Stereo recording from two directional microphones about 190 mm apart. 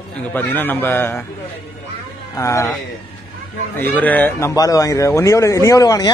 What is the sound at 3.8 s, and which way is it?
Speech, 10° left (ahead or behind).